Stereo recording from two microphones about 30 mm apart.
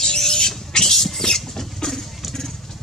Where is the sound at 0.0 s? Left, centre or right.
Left.